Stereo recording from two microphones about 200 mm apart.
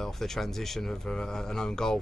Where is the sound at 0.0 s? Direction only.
Centre (ahead or behind).